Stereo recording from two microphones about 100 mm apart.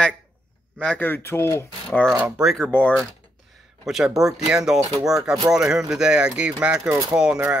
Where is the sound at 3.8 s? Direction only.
5° right (ahead or behind).